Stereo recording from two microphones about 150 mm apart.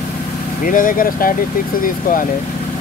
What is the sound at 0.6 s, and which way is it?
Speech, 65° left (ahead or behind).